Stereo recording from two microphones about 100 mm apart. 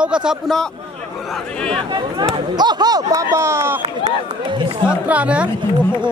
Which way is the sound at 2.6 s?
45° right (ahead or behind).